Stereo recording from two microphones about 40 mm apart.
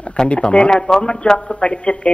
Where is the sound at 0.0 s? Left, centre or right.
Left.